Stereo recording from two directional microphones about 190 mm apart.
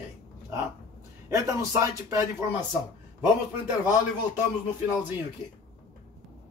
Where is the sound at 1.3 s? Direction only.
15° right (ahead or behind).